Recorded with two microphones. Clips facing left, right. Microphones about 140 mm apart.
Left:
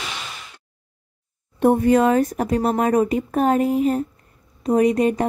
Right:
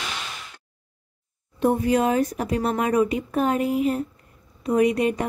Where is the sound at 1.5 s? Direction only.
50° left (ahead or behind).